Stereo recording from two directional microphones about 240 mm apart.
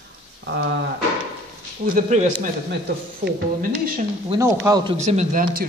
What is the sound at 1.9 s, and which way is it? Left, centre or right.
A man's voice, right.